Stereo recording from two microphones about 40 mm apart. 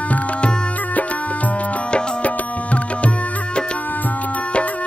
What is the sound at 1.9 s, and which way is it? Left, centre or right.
Music, left.